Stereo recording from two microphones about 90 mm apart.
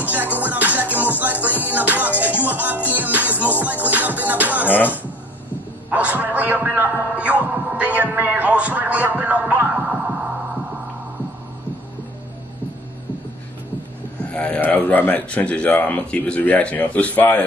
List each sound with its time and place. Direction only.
0.0 s music: 20° right (ahead or behind)
5.9 s music: 15° right (ahead or behind)
14.2 s speech: 15° left (ahead or behind)